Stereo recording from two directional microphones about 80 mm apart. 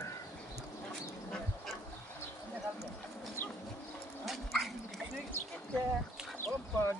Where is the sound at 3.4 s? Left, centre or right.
Left.